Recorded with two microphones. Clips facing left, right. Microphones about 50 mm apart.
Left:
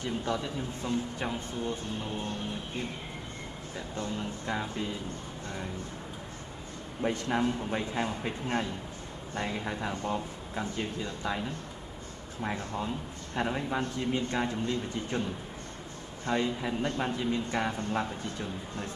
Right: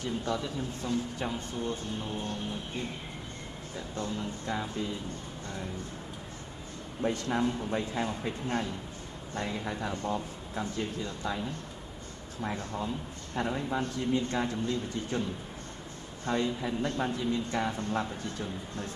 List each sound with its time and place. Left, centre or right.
0.0 s a man's voice: left
3.9 s a man's voice: left
7.1 s a man's voice: left
12.4 s a man's voice: left
16.3 s a man's voice: left